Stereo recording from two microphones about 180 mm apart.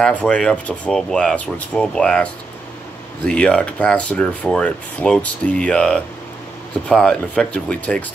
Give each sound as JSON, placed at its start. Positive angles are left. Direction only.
{"t": 0.0, "sound": "speech", "side_deg": 5}